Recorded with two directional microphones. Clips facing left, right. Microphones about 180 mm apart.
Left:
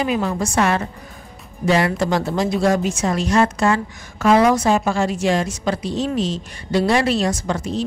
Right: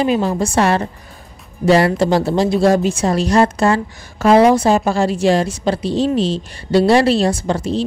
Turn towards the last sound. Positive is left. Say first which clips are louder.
# right 4 dB
turn(degrees=-30)  # may be behind; listen again after turning